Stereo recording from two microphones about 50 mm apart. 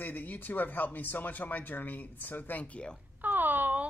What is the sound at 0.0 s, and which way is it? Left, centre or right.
Speech, left.